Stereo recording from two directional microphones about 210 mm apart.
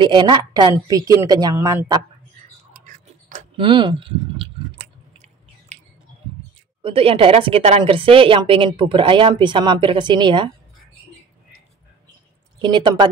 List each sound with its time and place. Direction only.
0.0 s a woman's voice: 20° right (ahead or behind)
2.8 s chewing: 35° right (ahead or behind)
3.5 s chewing: 25° right (ahead or behind)
6.8 s a woman's voice: 25° right (ahead or behind)
12.5 s speech: 20° right (ahead or behind)